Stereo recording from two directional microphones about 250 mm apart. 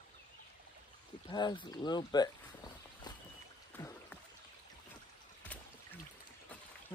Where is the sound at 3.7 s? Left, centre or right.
Centre.